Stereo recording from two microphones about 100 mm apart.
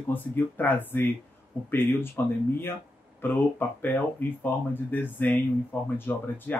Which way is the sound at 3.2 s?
20° left (ahead or behind).